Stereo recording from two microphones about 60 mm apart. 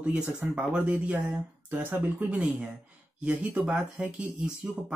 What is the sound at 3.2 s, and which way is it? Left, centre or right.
Speech, centre.